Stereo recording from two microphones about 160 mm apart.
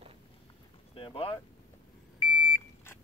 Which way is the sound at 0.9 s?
35° left (ahead or behind).